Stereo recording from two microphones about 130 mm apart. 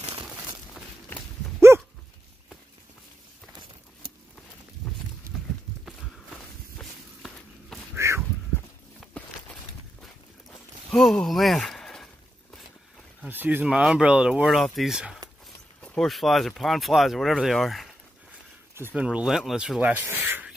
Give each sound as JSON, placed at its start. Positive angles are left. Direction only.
{"t": 4.8, "sound": "a sound", "side_deg": 0}
{"t": 5.9, "sound": "walk", "side_deg": 5}
{"t": 7.9, "sound": "a sound", "side_deg": -20}
{"t": 10.9, "sound": "speech", "side_deg": 5}
{"t": 13.2, "sound": "speech", "side_deg": -15}
{"t": 15.8, "sound": "speech", "side_deg": 5}
{"t": 18.8, "sound": "speech", "side_deg": -15}